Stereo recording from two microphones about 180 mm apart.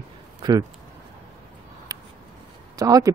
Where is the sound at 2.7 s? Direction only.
20° right (ahead or behind).